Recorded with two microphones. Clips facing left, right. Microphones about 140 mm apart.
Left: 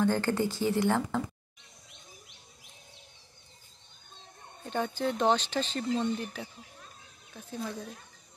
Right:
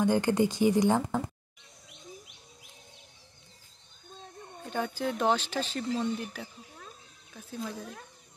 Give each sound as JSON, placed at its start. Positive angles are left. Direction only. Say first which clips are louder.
{"t": 0.0, "sound": "speech", "louder": "right 2 dB", "side_deg": -15}
{"t": 4.6, "sound": "speech", "louder": "left 1 dB", "side_deg": -5}